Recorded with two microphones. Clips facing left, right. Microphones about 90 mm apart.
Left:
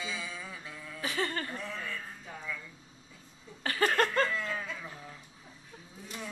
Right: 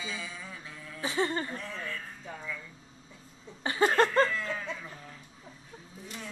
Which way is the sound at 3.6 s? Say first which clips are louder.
Right 3 dB; 20° right (ahead or behind).